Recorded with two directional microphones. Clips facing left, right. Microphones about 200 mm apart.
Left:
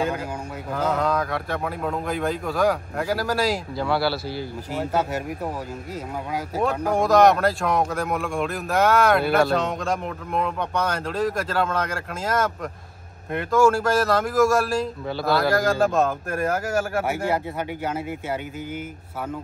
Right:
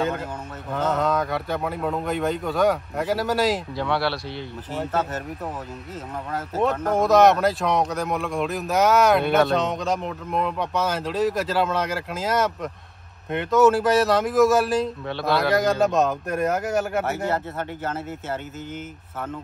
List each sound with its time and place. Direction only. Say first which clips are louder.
0.7 s speech: right 1 dB; centre (ahead or behind)
6.5 s speech: right 1 dB; centre (ahead or behind)
17.0 s speech: left 1 dB; 10° left (ahead or behind)